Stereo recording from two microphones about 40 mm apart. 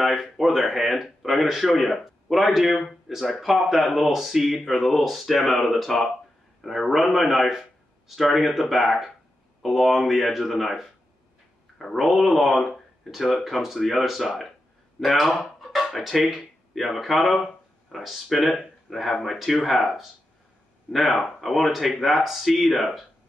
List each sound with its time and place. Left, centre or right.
0.0 s speech: centre